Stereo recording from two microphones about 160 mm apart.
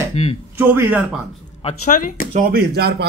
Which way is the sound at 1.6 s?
45° left (ahead or behind).